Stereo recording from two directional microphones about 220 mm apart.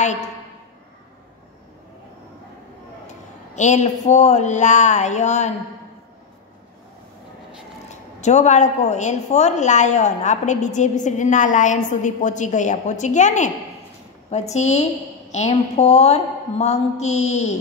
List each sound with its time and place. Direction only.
3.5 s speech: 35° left (ahead or behind)
7.9 s speech: 30° left (ahead or behind)